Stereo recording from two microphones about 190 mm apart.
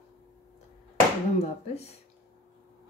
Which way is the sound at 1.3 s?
35° left (ahead or behind).